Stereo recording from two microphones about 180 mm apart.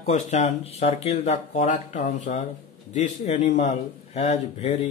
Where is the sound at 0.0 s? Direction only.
40° left (ahead or behind).